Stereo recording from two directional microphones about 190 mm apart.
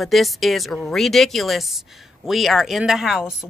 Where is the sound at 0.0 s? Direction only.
Centre (ahead or behind).